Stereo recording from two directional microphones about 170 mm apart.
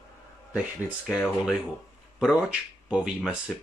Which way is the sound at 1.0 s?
5° right (ahead or behind).